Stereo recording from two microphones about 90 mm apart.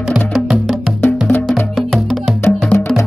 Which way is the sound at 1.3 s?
20° left (ahead or behind).